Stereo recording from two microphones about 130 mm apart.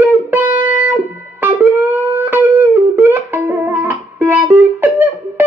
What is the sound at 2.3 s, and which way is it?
Music, 15° right (ahead or behind).